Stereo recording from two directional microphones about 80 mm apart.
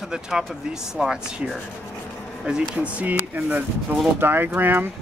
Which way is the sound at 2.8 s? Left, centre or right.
Centre.